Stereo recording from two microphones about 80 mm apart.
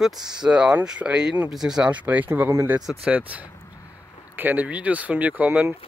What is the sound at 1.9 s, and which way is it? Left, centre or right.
Speech, centre.